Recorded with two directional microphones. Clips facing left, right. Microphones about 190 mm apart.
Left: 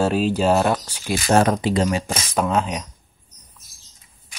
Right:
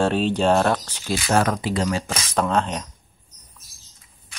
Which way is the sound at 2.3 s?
5° left (ahead or behind).